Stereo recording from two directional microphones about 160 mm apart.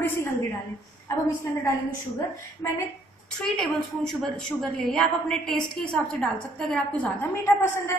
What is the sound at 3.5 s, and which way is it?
A woman's voice, 5° left (ahead or behind).